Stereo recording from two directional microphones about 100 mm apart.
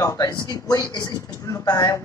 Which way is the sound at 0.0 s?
35° left (ahead or behind).